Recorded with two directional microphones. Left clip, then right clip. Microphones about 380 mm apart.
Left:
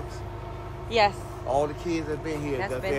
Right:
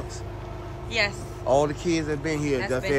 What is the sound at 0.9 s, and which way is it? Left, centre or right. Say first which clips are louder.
Speech: left 3 dB; centre.